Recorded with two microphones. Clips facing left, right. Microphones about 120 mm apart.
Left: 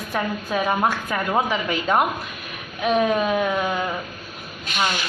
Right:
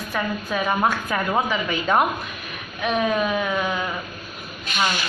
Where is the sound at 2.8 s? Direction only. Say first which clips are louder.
Left 2 dB; 25° left (ahead or behind).